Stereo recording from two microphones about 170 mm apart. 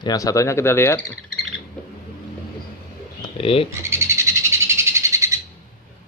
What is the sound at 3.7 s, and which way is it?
Bird, 15° right (ahead or behind).